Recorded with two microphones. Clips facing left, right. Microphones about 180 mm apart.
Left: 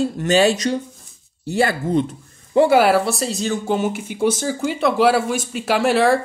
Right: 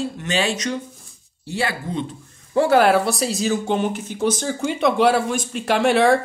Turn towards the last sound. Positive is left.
turn(degrees=0)  # may be behind; listen again after turning